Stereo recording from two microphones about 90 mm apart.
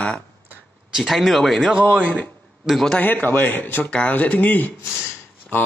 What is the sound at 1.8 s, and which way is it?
Speech, 15° right (ahead or behind).